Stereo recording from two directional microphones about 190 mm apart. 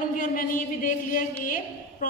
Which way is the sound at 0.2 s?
45° left (ahead or behind).